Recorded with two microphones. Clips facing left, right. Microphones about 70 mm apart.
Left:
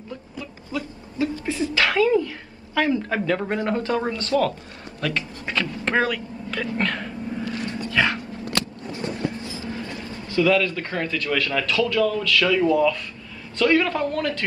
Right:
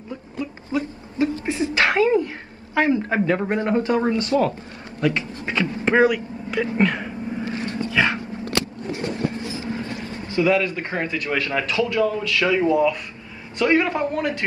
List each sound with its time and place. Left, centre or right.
0.4 s a sound: right
7.4 s dog: right
7.9 s dog: centre
9.6 s a man's voice: right